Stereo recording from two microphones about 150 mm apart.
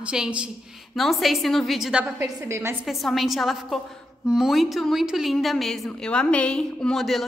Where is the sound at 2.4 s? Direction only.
20° right (ahead or behind).